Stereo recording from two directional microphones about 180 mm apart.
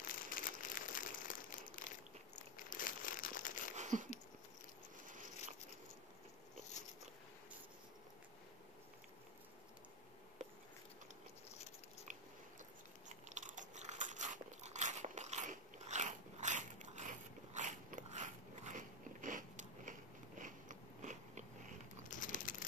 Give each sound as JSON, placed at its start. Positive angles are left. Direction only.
{"t": 0.3, "sound": "crumpling", "side_deg": 50}
{"t": 3.7, "sound": "a sound", "side_deg": -45}
{"t": 13.3, "sound": "biting", "side_deg": -40}
{"t": 22.1, "sound": "crumpling", "side_deg": 45}